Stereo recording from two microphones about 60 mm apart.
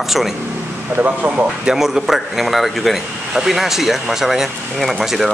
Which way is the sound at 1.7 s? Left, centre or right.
Centre.